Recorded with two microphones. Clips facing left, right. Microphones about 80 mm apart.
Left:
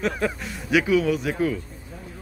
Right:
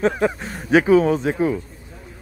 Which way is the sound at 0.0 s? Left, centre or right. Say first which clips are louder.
Right 6 dB; right.